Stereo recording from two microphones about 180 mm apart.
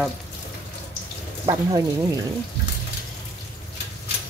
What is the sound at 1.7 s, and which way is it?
Speech, 25° right (ahead or behind).